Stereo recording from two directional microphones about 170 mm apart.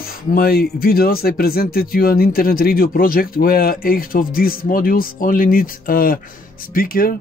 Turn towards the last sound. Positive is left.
turn(degrees=55)  # may be behind; listen again after turning